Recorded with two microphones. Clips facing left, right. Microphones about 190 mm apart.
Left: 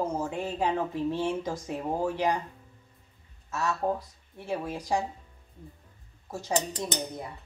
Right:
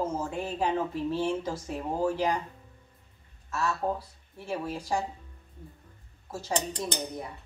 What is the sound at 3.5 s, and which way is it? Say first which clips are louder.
Speech: left 1 dB; 20° left (ahead or behind).